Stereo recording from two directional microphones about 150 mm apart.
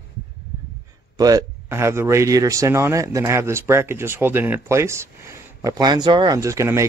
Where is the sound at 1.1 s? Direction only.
25° right (ahead or behind).